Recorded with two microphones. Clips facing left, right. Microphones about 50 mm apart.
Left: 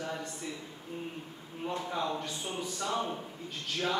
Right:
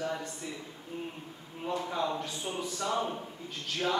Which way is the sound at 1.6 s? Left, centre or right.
Centre.